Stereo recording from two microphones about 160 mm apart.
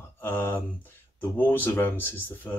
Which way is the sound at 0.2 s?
15° left (ahead or behind).